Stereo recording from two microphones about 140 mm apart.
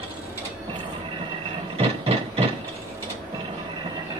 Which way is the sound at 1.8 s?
45° right (ahead or behind).